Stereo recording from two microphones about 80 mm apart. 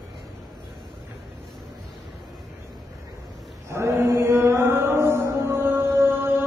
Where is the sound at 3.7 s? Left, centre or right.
Right.